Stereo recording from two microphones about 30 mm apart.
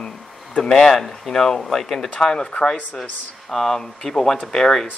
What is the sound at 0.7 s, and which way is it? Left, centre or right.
Speech, centre.